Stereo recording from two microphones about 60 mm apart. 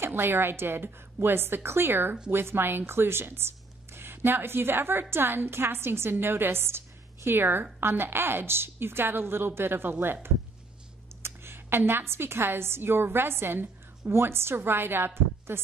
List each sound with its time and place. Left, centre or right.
0.0 s a woman's voice: right
11.2 s a woman's voice: right